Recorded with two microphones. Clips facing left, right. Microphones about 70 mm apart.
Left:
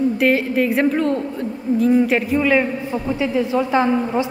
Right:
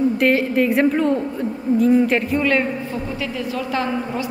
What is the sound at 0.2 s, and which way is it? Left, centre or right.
A woman's voice, centre.